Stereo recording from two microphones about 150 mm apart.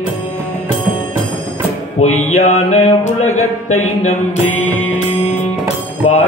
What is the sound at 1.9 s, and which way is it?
Mantra, 50° left (ahead or behind).